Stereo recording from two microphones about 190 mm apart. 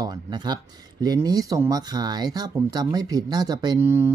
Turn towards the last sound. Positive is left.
turn(degrees=-10)  # may be behind; listen again after turning